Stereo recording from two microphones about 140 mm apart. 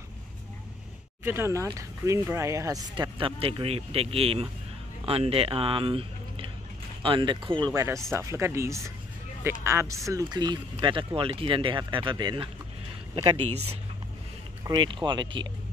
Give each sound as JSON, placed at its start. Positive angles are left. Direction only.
{"t": 1.2, "sound": "speech", "side_deg": -15}
{"t": 7.7, "sound": "speech", "side_deg": -20}
{"t": 14.6, "sound": "speech", "side_deg": -35}